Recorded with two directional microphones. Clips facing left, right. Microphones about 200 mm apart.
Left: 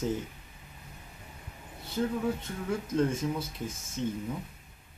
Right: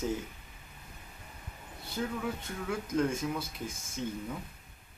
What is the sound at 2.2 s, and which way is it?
Speech, 30° left (ahead or behind).